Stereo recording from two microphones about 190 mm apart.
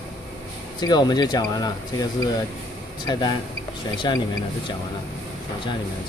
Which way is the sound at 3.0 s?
20° left (ahead or behind).